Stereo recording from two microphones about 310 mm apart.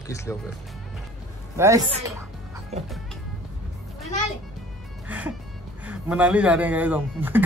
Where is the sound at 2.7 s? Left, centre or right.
Right.